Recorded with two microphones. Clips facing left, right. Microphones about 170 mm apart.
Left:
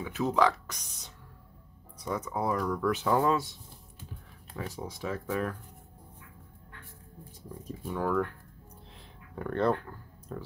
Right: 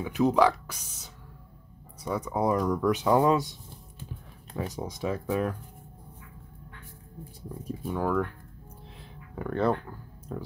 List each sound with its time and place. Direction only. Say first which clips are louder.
0.0 s speech: right 4 dB; 15° right (ahead or behind)
4.6 s speech: right 5 dB; 20° right (ahead or behind)
7.6 s speech: right 2 dB; 5° right (ahead or behind)
8.9 s a sound: right 2 dB; 5° right (ahead or behind)